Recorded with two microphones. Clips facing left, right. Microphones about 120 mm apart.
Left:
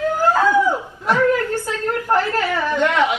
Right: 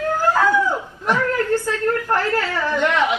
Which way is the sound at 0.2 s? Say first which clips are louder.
Left 2 dB; 15° left (ahead or behind).